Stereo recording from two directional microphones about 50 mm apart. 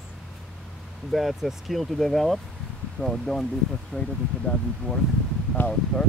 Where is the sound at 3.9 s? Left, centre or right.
Left.